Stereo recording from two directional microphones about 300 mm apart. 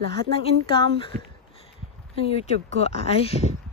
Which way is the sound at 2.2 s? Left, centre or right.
Left.